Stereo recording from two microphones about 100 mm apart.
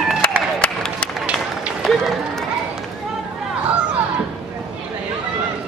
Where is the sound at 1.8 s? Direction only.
Centre (ahead or behind).